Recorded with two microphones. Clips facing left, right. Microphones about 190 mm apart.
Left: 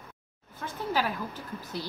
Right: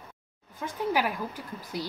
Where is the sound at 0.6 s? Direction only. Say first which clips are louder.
Right 2 dB; 15° right (ahead or behind).